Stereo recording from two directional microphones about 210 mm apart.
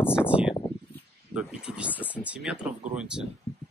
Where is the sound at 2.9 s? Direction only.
5° right (ahead or behind).